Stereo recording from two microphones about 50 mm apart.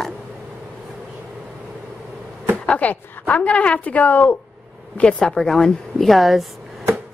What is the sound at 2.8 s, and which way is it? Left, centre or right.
A woman's voice, left.